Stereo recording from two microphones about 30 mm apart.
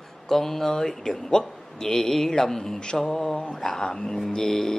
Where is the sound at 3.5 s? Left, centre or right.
Centre.